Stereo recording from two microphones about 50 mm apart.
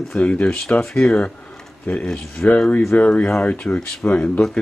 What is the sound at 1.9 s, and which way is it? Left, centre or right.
Speech, left.